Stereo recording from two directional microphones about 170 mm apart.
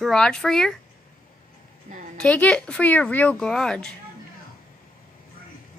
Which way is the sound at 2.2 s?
5° left (ahead or behind).